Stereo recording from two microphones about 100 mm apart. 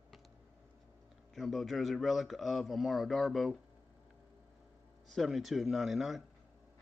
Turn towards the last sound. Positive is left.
turn(degrees=0)  # may be behind; listen again after turning